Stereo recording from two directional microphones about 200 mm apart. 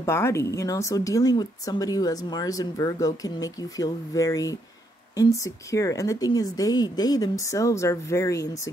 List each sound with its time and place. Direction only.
0.0 s a woman's voice: 15° left (ahead or behind)